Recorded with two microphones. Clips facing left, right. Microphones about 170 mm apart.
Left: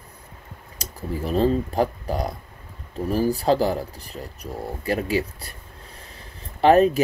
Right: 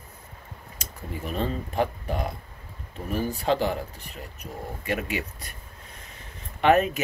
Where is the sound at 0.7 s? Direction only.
35° left (ahead or behind).